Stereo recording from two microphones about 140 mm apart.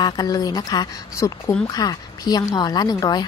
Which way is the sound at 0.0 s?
25° left (ahead or behind).